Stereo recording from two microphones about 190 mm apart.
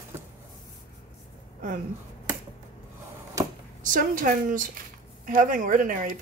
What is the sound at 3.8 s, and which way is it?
Speech, 45° right (ahead or behind).